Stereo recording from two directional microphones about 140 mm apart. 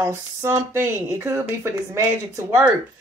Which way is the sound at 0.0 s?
20° right (ahead or behind).